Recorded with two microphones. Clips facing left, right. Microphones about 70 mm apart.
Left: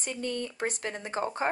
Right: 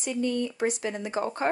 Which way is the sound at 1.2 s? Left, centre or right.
Centre.